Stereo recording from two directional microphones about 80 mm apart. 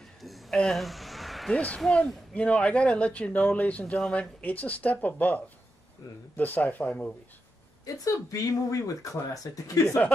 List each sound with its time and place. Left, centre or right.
0.2 s a sound: centre
1.5 s speech: centre
7.8 s speech: left